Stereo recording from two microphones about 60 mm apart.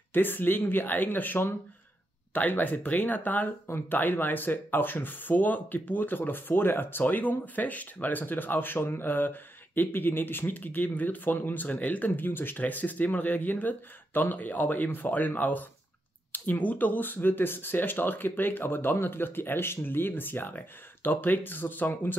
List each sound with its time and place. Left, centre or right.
0.1 s speech: left